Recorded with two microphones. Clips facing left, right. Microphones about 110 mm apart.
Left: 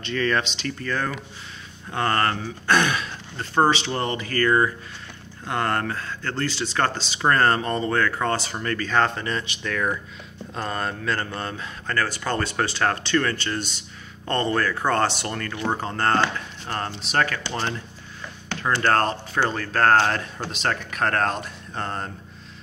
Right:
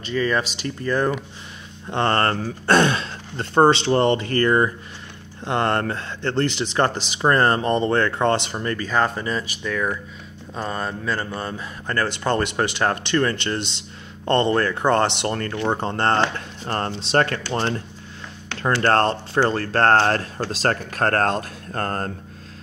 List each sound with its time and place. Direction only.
0.0 s speech: 10° right (ahead or behind)
0.7 s speech: 20° right (ahead or behind)
8.8 s speech: 10° right (ahead or behind)
15.2 s speech: 35° right (ahead or behind)
15.6 s speech: 25° right (ahead or behind)
16.6 s speech: 45° right (ahead or behind)
17.0 s speech: 30° right (ahead or behind)
21.7 s speech: 50° right (ahead or behind)